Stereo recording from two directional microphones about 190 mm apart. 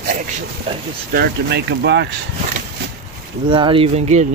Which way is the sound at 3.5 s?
25° right (ahead or behind).